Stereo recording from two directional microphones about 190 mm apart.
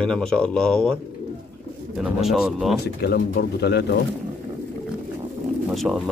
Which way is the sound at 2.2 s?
Centre (ahead or behind).